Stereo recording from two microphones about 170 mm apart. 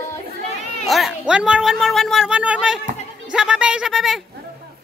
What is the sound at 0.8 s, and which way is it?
Speech, centre (ahead or behind).